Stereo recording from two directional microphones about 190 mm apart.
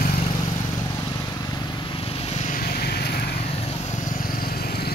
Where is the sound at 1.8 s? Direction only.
30° left (ahead or behind).